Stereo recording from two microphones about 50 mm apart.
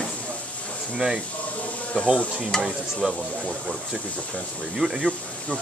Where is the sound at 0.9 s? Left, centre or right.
Right.